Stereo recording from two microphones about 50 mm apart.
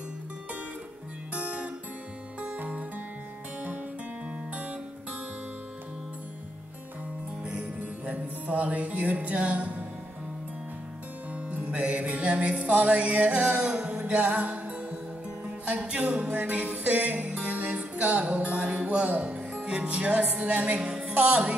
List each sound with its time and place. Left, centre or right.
1.3 s guitar: right
2.4 s music: right
7.4 s music: right
11.3 s music: right
20.7 s music: centre